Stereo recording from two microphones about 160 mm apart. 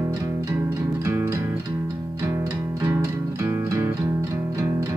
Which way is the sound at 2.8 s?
20° right (ahead or behind).